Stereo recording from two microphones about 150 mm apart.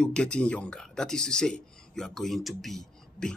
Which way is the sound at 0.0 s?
5° left (ahead or behind).